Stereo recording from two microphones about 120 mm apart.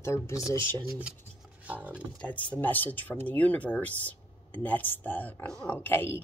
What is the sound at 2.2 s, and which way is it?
Speech, 10° left (ahead or behind).